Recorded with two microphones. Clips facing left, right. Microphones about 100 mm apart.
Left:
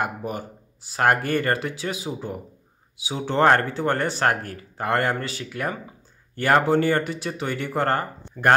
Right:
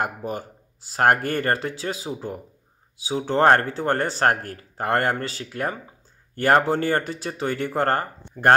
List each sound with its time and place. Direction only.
0.0 s speech: 40° right (ahead or behind)